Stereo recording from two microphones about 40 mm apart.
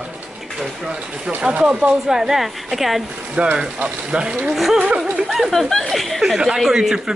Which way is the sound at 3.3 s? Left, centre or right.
Right.